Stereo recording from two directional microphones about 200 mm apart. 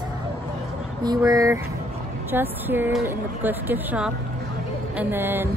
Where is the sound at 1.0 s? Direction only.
20° right (ahead or behind).